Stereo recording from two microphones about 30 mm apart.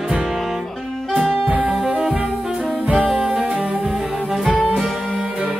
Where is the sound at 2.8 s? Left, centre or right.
Right.